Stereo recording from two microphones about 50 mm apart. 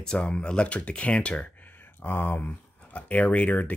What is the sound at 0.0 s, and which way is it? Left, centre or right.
Speech, centre.